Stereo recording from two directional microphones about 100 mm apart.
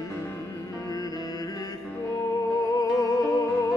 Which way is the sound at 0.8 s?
40° left (ahead or behind).